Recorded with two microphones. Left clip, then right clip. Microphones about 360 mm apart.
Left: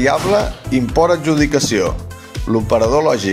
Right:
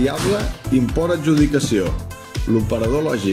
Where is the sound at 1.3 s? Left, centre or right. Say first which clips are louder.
Left 2 dB; centre.